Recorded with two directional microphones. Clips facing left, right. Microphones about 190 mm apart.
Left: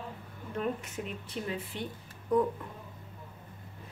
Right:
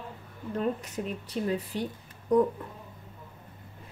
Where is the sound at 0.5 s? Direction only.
35° right (ahead or behind).